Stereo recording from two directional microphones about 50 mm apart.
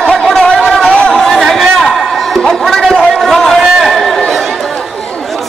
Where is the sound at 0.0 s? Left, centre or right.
Centre.